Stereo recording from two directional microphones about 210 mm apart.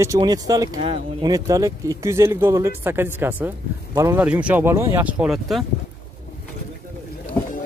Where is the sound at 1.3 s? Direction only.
15° right (ahead or behind).